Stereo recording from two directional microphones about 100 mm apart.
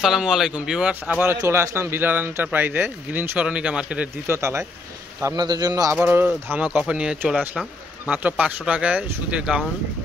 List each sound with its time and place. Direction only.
0.0 s speech: 5° right (ahead or behind)
1.2 s speech: 25° right (ahead or behind)
4.3 s speech: 30° right (ahead or behind)
5.3 s a man's voice: 45° right (ahead or behind)
5.9 s speech: 20° right (ahead or behind)
6.7 s speech: 5° right (ahead or behind)